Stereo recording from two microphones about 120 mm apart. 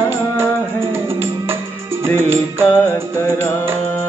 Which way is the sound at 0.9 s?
20° right (ahead or behind).